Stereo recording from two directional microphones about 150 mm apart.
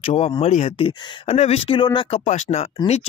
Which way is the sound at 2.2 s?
45° left (ahead or behind).